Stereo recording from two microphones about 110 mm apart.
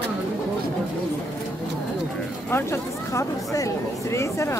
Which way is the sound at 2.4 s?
20° left (ahead or behind).